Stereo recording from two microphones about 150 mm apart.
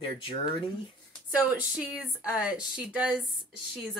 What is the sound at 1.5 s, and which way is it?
Speech, 10° right (ahead or behind).